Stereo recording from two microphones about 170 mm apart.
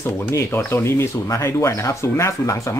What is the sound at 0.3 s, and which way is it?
Speech, 15° left (ahead or behind).